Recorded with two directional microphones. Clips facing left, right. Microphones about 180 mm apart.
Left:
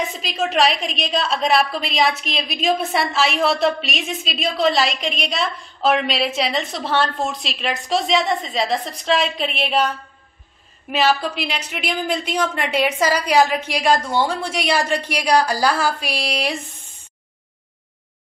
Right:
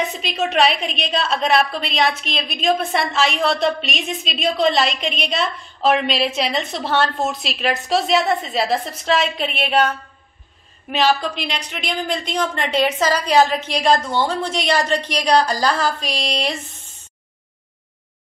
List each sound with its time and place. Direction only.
0.2 s a woman's voice: centre (ahead or behind)
10.9 s a woman's voice: 5° left (ahead or behind)